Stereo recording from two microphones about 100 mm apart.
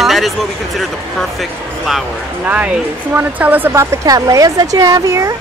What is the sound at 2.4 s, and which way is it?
Speech, 10° right (ahead or behind).